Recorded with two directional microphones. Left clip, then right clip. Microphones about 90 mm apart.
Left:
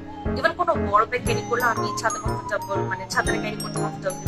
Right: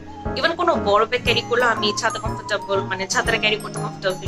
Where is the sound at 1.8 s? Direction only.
20° right (ahead or behind).